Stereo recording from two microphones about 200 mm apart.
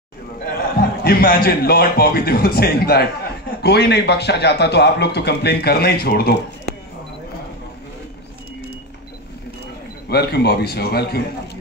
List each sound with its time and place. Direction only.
0.7 s a man's voice: 50° left (ahead or behind)
10.0 s a man's voice: 55° left (ahead or behind)